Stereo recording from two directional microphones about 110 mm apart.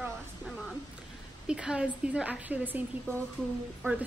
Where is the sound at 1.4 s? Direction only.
10° right (ahead or behind).